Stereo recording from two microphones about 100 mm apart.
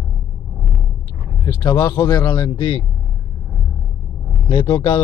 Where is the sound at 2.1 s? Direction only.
50° left (ahead or behind).